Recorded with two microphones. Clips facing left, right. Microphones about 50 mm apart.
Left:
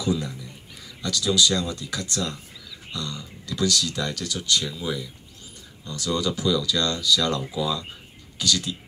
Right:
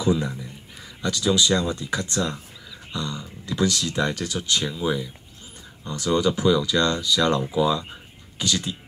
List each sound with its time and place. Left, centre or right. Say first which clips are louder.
0.0 s speech: right 3 dB; right